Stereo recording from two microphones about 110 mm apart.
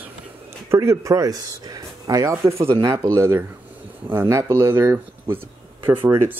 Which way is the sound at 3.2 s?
25° right (ahead or behind).